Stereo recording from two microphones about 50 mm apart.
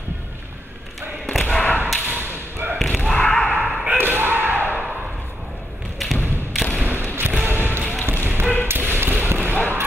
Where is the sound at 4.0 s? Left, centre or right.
Right.